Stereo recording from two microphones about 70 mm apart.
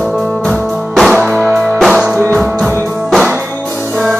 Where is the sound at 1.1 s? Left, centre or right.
Centre.